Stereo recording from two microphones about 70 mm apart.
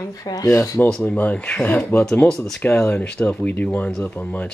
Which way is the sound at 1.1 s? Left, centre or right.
Left.